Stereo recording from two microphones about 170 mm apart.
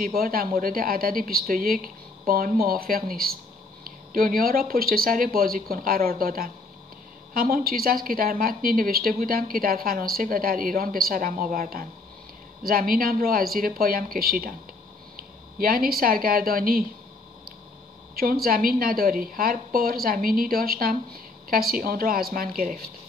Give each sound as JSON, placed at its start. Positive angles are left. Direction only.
{"t": 0.0, "sound": "a woman's voice", "side_deg": -60}
{"t": 18.1, "sound": "a woman's voice", "side_deg": -60}